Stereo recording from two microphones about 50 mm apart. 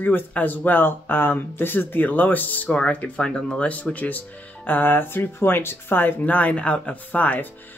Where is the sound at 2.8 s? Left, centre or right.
Left.